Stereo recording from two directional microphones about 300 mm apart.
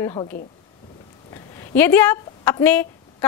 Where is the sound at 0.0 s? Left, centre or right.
Centre.